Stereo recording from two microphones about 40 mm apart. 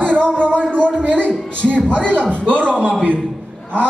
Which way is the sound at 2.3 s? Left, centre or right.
Right.